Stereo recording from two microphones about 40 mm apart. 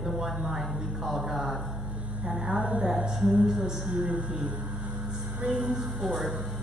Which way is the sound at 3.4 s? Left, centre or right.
Centre.